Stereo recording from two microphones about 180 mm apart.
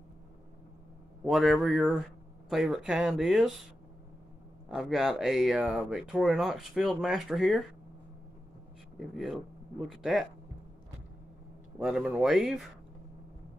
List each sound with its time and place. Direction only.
1.2 s speech: centre (ahead or behind)
4.6 s speech: 5° right (ahead or behind)
9.1 s speech: centre (ahead or behind)
11.8 s speech: 5° right (ahead or behind)